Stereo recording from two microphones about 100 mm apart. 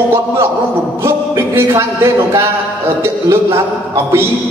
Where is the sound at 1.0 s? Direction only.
25° right (ahead or behind).